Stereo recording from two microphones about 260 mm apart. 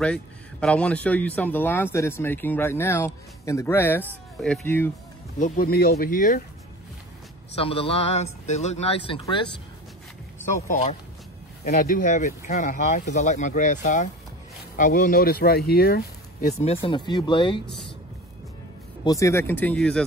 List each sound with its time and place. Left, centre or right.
0.0 s speech: centre
4.0 s speech: centre
4.5 s speech: centre
5.4 s speech: left
7.5 s a man's voice: left
10.7 s a man's voice: left
19.0 s speech: centre